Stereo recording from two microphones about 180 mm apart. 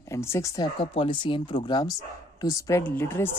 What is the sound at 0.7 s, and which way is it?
Speech, 30° left (ahead or behind).